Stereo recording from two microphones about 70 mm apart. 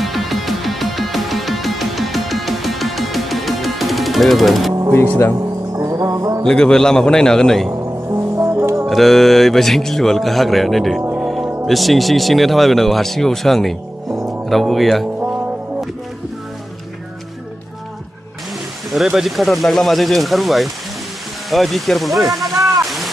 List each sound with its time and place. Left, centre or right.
0.0 s music: centre
5.4 s music: right
6.4 s speech: centre
7.7 s music: right
8.4 s brass instrument: right
8.8 s speech: centre
11.1 s music: centre
11.6 s speech: centre
15.1 s music: right
19.0 s speech: centre
22.8 s a sound: centre